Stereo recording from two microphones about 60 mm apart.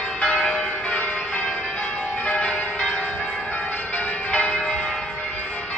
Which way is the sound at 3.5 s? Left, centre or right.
Left.